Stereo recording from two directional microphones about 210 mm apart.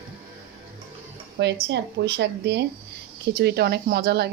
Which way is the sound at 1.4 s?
55° right (ahead or behind).